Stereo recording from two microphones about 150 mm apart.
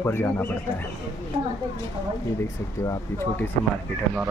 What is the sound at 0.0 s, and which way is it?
Speech, 15° left (ahead or behind).